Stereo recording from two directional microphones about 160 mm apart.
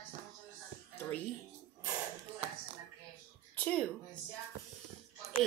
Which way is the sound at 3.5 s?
10° left (ahead or behind).